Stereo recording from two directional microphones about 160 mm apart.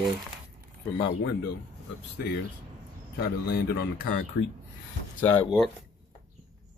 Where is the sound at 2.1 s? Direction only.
90° left.